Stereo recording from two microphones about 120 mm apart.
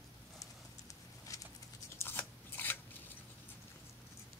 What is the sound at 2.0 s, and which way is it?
Scissors, 20° left (ahead or behind).